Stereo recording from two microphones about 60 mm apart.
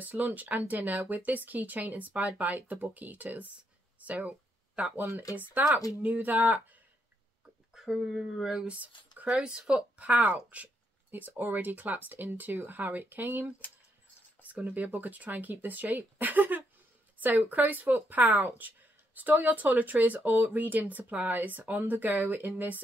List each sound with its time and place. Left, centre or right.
0.0 s speech: right
4.0 s a sound: right
5.3 s speech: right
7.7 s speech: centre
8.6 s speech: right
9.3 s speech: centre; by 18.5 s right
18.6 s a sound: right
19.4 s speech: right